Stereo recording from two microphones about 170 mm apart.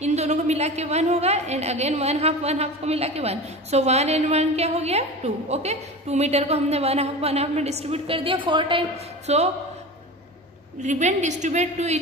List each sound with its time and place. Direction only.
0.0 s a woman's voice: 40° right (ahead or behind)
10.8 s a woman's voice: 45° right (ahead or behind)